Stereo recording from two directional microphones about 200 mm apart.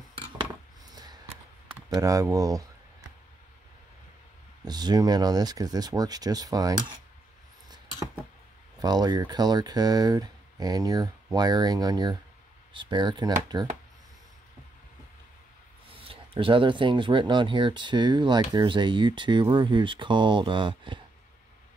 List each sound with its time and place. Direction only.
1.9 s speech: 15° right (ahead or behind)
4.6 s speech: 20° right (ahead or behind)
8.7 s speech: 20° right (ahead or behind)
15.9 s speech: 25° right (ahead or behind)